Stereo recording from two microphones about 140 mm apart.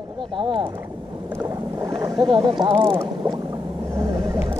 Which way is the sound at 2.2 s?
35° right (ahead or behind).